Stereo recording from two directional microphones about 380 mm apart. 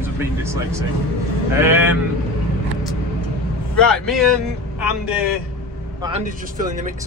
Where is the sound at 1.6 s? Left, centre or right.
Centre.